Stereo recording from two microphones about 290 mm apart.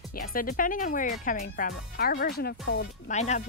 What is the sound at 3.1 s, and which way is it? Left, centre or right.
Speech, left.